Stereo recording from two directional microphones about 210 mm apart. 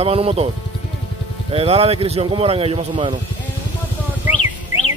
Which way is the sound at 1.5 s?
30° right (ahead or behind).